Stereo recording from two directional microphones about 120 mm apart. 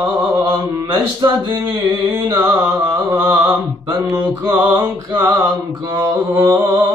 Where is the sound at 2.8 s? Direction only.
15° right (ahead or behind).